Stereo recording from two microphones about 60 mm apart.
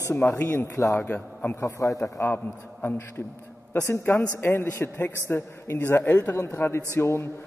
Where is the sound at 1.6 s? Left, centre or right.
Left.